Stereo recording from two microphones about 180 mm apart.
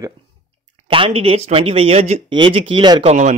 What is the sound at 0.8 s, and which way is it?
A man's voice, 30° right (ahead or behind).